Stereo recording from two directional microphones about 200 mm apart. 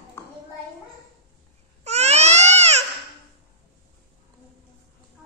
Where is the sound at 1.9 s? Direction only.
35° right (ahead or behind).